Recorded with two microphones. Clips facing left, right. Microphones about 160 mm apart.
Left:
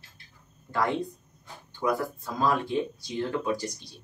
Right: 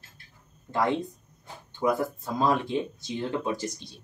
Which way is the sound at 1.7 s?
20° right (ahead or behind).